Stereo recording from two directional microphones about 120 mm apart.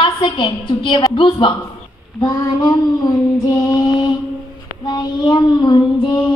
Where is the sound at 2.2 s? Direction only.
35° left (ahead or behind).